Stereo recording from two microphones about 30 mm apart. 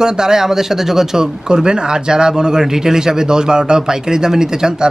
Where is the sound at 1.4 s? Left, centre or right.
Right.